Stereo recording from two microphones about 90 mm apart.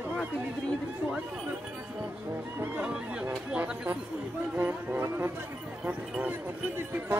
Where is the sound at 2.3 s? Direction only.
20° right (ahead or behind).